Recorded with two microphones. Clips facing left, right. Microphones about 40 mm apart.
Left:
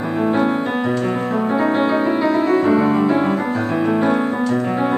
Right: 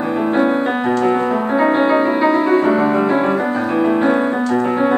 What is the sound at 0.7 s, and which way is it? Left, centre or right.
Keyboard, centre.